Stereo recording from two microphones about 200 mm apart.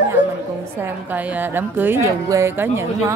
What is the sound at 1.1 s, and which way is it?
Speech, 10° right (ahead or behind).